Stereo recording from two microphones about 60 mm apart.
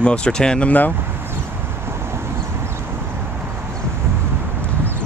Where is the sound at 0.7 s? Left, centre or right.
Left.